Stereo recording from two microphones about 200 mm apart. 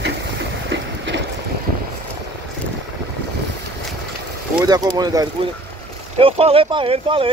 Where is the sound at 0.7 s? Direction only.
60° right (ahead or behind).